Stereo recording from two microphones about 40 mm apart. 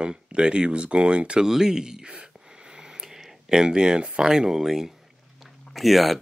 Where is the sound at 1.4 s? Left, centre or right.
Centre.